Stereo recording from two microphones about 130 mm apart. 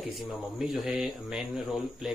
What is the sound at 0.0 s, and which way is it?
Speech, centre (ahead or behind).